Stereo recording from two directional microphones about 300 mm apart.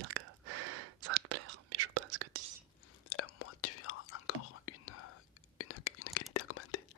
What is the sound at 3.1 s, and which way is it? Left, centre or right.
Whispering, left.